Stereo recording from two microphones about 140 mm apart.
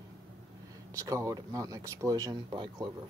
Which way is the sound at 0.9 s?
25° right (ahead or behind).